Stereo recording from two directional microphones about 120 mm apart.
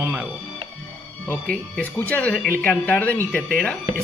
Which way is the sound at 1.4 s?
10° left (ahead or behind).